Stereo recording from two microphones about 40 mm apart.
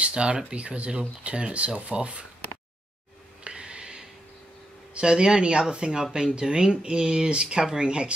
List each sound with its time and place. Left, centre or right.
0.0 s speech: right
3.4 s a sound: right
4.9 s speech: right